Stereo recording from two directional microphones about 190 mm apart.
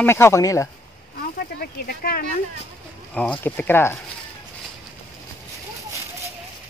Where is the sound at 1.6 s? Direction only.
55° left (ahead or behind).